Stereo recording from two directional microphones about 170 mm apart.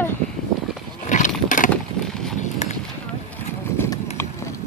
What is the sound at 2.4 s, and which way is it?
Horse, 40° left (ahead or behind).